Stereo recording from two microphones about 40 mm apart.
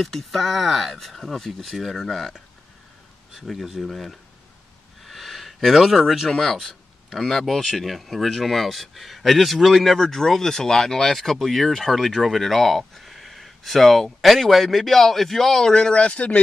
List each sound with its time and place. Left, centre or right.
0.0 s speech: centre
3.3 s speech: centre
15.7 s speech: left